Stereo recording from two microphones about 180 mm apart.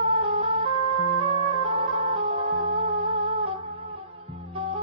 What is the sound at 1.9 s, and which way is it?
Music, 40° right (ahead or behind).